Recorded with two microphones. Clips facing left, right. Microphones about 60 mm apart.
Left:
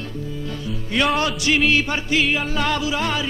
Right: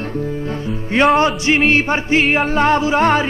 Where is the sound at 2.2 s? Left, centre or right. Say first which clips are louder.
Right 6 dB; right.